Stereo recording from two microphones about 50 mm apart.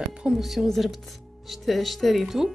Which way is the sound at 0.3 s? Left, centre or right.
Centre.